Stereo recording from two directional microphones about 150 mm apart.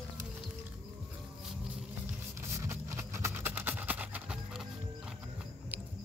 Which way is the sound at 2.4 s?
20° right (ahead or behind).